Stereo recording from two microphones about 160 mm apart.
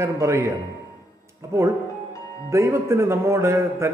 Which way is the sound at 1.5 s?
15° right (ahead or behind).